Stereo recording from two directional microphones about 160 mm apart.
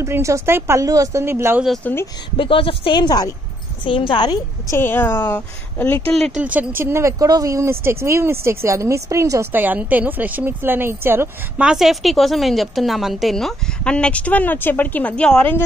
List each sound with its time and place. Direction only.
0.0 s a woman's voice: 20° right (ahead or behind)
1.8 s a woman's voice: 10° left (ahead or behind)
2.3 s a woman's voice: 35° left (ahead or behind)
4.7 s a woman's voice: 15° left (ahead or behind)
6.1 s a woman's voice: centre (ahead or behind)
6.4 s a woman's voice: 10° right (ahead or behind); by 15.6 s 10° left (ahead or behind)